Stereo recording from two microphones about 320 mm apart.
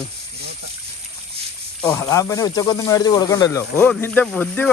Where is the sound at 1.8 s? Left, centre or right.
Centre.